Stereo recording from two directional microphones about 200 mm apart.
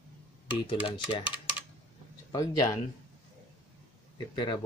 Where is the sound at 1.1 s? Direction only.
25° left (ahead or behind).